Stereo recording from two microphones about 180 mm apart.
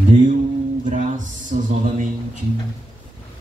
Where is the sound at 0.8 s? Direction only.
45° right (ahead or behind).